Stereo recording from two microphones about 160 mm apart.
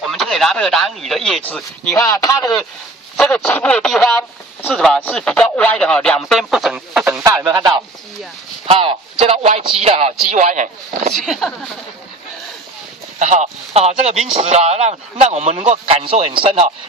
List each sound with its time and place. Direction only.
0.0 s speech: centre (ahead or behind); by 2.5 s 20° left (ahead or behind)
3.2 s speech: 10° left (ahead or behind)
8.6 s speech: 35° right (ahead or behind); by 10.7 s 50° right (ahead or behind)
11.1 s speech: centre (ahead or behind)
13.2 s speech: 45° right (ahead or behind)